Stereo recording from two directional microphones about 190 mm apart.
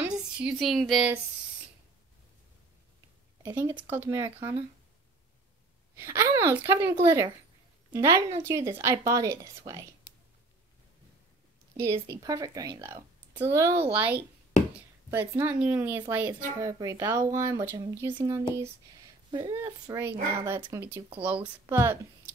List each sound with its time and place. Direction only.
0.0 s speech: 5° right (ahead or behind)
3.5 s speech: 10° right (ahead or behind)
5.9 s speech: 15° right (ahead or behind)
11.7 s speech: 15° right (ahead or behind)
19.5 s speech: 10° right (ahead or behind)